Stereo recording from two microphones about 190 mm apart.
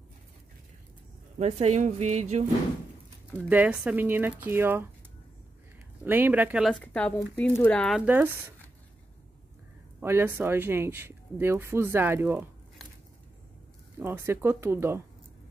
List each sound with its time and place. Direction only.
1.4 s speech: 35° right (ahead or behind)
3.4 s speech: 5° right (ahead or behind)
6.0 s speech: 10° right (ahead or behind)
6.7 s speech: 5° left (ahead or behind)
8.0 s speech: 10° right (ahead or behind)
9.9 s speech: 10° right (ahead or behind)
13.9 s speech: 10° right (ahead or behind)